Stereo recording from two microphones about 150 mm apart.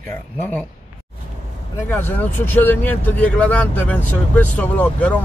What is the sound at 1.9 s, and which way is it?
Speech, 15° left (ahead or behind).